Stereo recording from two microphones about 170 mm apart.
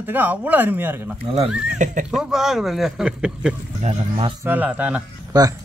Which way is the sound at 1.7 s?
50° right (ahead or behind).